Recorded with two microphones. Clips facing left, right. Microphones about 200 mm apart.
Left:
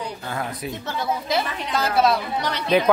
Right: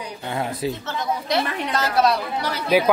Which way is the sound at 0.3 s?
25° right (ahead or behind).